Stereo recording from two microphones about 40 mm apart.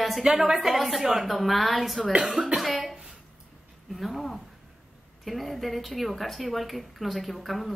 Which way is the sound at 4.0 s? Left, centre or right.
Centre.